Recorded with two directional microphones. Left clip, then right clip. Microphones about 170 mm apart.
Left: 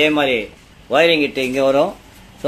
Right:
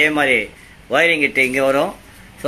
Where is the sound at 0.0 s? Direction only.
10° left (ahead or behind).